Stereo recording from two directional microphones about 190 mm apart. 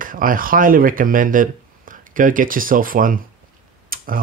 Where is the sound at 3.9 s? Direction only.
50° right (ahead or behind).